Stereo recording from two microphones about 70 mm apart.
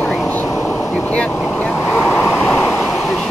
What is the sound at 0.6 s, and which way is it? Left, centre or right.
Air conditioning, left.